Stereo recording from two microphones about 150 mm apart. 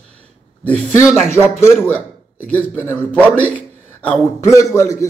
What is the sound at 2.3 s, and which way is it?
A man's voice, 10° left (ahead or behind).